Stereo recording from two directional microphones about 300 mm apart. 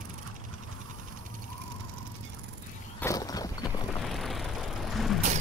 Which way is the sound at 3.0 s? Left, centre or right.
Centre.